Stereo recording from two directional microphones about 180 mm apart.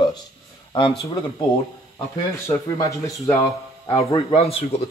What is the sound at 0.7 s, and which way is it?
Speech, 25° left (ahead or behind).